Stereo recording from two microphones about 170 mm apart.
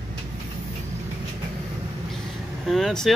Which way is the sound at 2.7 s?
Centre (ahead or behind).